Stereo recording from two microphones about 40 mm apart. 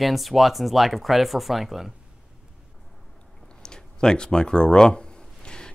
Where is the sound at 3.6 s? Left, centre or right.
Centre.